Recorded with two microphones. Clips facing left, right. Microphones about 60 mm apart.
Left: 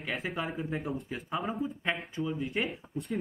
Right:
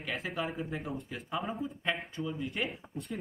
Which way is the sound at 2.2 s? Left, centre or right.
Centre.